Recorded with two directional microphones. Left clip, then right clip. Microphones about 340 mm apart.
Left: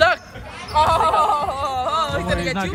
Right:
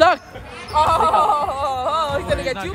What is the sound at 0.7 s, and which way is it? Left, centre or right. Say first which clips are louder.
Speech: right 1 dB; centre.